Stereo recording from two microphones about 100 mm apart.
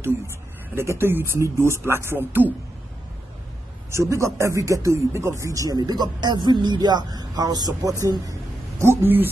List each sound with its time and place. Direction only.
0.7 s speech: 25° right (ahead or behind)
3.9 s speech: 30° right (ahead or behind)